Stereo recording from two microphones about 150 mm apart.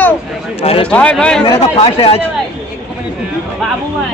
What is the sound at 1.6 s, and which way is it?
Speech, 40° left (ahead or behind).